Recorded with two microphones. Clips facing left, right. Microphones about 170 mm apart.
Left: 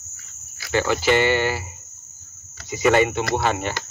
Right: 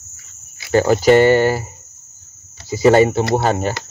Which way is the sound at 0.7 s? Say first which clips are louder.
Right 8 dB; 40° right (ahead or behind).